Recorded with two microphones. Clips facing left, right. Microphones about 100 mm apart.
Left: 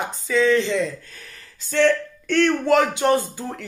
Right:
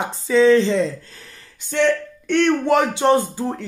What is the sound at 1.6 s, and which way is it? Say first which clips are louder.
Speech: even; 20° right (ahead or behind).